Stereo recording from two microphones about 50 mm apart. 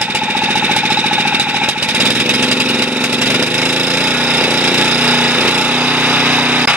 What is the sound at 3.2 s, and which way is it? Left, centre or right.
Jackhammer, right.